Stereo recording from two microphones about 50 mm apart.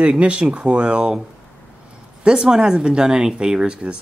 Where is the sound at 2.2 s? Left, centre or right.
Centre.